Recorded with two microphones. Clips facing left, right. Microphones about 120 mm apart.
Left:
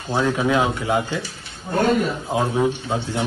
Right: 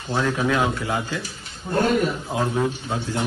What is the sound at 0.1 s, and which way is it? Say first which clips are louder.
Speech: left 3 dB; 15° left (ahead or behind).